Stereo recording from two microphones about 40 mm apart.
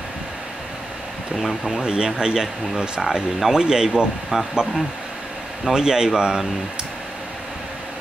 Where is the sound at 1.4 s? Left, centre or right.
Centre.